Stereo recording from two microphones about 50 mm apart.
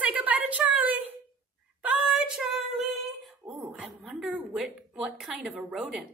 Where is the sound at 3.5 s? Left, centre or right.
Right.